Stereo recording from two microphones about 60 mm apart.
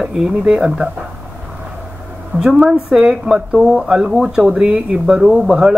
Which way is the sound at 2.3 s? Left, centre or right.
Centre.